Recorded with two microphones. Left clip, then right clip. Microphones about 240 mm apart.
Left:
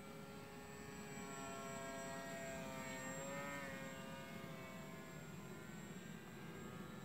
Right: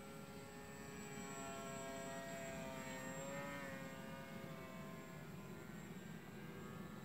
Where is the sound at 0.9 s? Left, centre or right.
Centre; by 4.8 s left.